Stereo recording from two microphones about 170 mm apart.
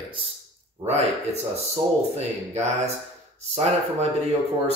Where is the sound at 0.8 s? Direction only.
40° right (ahead or behind).